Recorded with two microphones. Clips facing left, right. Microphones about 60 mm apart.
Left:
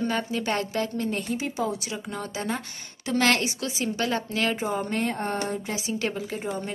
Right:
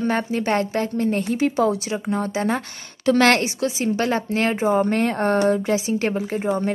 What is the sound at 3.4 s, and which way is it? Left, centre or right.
Speech, right.